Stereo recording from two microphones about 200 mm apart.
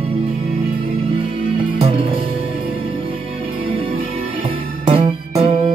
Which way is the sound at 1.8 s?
30° right (ahead or behind).